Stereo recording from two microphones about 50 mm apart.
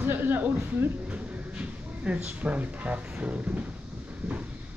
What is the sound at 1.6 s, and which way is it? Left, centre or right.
Speech, right.